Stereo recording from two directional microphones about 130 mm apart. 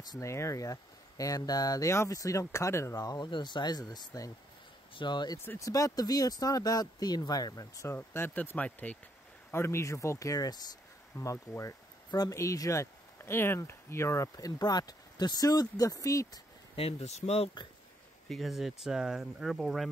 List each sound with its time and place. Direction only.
0.0 s speech: 25° left (ahead or behind)
5.4 s speech: 20° left (ahead or behind)
16.7 s speech: 55° left (ahead or behind)
18.3 s speech: centre (ahead or behind)